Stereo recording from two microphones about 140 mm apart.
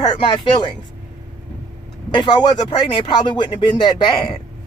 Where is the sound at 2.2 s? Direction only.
35° left (ahead or behind).